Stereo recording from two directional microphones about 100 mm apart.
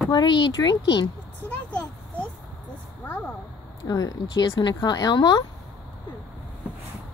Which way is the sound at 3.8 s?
40° left (ahead or behind).